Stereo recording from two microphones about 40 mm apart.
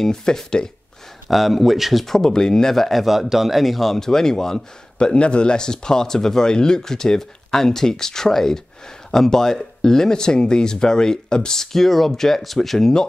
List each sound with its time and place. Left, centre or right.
0.0 s speech: centre
1.3 s a man's voice: centre
2.0 s speech: centre
4.9 s speech: left